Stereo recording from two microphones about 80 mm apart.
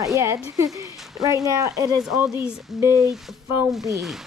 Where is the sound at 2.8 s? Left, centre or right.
Right.